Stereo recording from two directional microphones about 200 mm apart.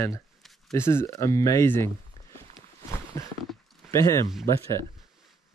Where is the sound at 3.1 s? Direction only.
15° left (ahead or behind).